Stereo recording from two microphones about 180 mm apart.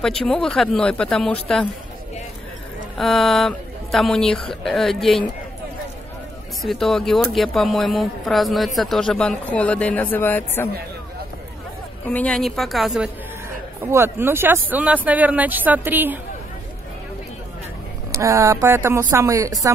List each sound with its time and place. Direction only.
0.0 s speech: 5° left (ahead or behind)
3.0 s speech: centre (ahead or behind)
6.6 s speech: centre (ahead or behind)
12.1 s speech: 5° left (ahead or behind)
13.7 s speech: 15° right (ahead or behind)
18.1 s speech: 15° right (ahead or behind)